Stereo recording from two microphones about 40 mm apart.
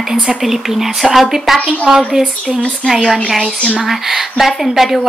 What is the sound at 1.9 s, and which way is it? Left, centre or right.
Speech, centre.